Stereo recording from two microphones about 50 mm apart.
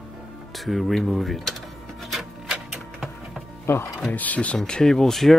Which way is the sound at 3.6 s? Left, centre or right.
Left.